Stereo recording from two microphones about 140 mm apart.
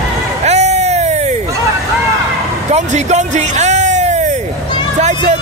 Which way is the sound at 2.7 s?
55° right (ahead or behind).